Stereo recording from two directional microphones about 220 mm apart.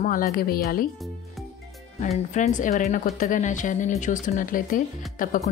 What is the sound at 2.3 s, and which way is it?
Speech, 35° left (ahead or behind).